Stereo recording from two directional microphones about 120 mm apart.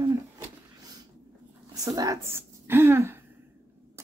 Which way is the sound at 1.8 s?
30° right (ahead or behind).